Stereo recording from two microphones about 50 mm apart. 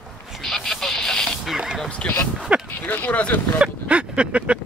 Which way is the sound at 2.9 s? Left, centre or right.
Left.